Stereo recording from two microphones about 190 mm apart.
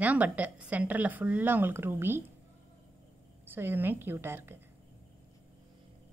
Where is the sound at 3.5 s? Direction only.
10° right (ahead or behind).